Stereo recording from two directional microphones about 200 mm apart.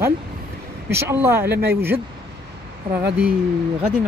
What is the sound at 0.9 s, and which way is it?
Speech, 10° right (ahead or behind).